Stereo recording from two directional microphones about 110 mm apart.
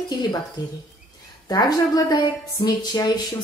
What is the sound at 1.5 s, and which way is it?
A woman's voice, 35° left (ahead or behind).